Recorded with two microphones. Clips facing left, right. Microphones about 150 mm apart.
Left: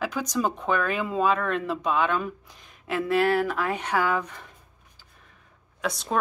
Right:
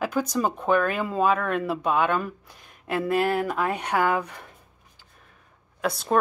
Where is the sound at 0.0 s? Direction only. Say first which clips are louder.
Right 2 dB; 10° right (ahead or behind).